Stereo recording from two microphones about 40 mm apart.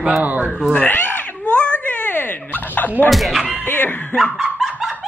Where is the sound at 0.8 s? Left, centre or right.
Left.